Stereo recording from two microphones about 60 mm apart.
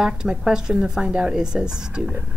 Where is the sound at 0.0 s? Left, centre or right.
Centre.